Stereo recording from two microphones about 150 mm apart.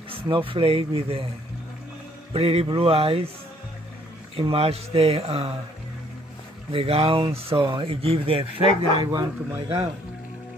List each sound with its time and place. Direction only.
0.1 s speech: 35° right (ahead or behind)
2.3 s speech: 40° right (ahead or behind)
4.4 s speech: 40° right (ahead or behind)
6.7 s speech: 40° right (ahead or behind)
8.6 s speech: 25° right (ahead or behind)